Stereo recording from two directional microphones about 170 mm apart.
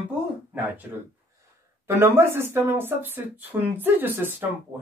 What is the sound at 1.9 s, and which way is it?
Speech, 15° right (ahead or behind).